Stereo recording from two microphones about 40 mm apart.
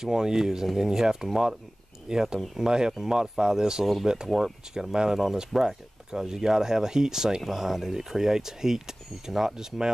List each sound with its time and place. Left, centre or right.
0.0 s speech: centre